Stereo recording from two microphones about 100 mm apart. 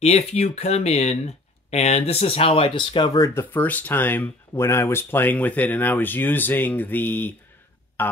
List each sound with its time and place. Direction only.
0.0 s speech: 90° left; by 3.3 s 45° left (ahead or behind)
3.3 s speech: 15° left (ahead or behind)